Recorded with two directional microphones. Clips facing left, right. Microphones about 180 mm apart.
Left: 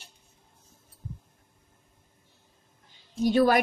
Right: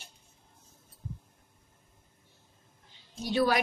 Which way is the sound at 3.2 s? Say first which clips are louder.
Left 6 dB; 50° left (ahead or behind).